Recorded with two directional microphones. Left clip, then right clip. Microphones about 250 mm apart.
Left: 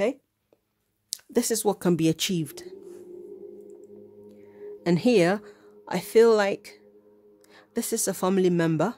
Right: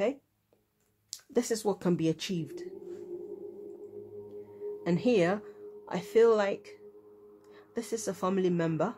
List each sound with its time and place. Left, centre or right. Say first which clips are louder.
1.1 s speech: left 4 dB; left
4.8 s speech: left 6 dB; left